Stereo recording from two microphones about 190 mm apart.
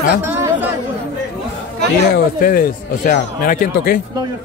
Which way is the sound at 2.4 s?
50° left (ahead or behind).